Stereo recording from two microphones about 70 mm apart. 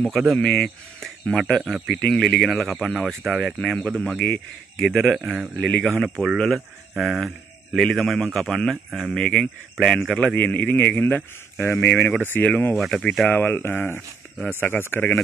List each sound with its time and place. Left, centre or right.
0.0 s speech: centre
0.4 s speech: centre
2.1 s speech: centre
3.6 s speech: centre
12.7 s speech: centre
13.3 s a man's voice: left